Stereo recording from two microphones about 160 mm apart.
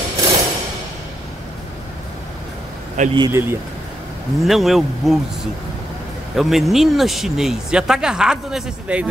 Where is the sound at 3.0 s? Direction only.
45° right (ahead or behind).